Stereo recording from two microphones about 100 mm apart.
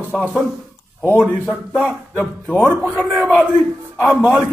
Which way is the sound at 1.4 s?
Centre (ahead or behind).